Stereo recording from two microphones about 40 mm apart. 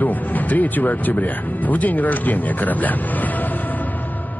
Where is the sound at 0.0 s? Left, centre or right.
Left.